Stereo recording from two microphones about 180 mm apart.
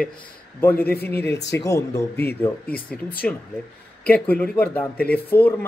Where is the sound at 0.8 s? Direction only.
60° left (ahead or behind).